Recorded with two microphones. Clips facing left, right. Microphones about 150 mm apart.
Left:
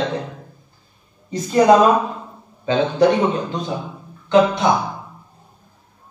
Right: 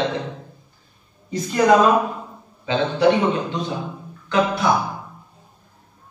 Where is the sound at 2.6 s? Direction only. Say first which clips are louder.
Left 2 dB; 45° left (ahead or behind).